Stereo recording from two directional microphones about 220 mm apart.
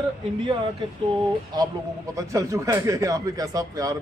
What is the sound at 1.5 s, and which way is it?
A man's voice, 20° right (ahead or behind).